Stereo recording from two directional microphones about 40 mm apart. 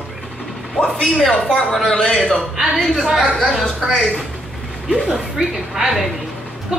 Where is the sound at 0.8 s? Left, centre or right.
Centre.